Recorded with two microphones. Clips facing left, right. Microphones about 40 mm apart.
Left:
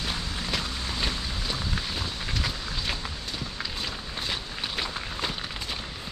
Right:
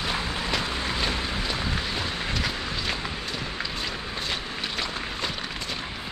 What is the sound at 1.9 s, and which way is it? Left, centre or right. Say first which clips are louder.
Vehicle: right 4 dB; right.